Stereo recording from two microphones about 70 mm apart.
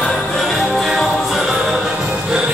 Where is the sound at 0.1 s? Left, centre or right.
Centre.